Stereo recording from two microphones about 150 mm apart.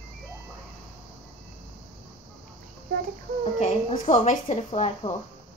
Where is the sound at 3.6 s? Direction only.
50° left (ahead or behind).